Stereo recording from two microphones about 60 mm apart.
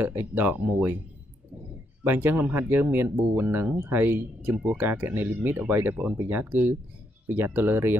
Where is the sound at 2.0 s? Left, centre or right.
Right.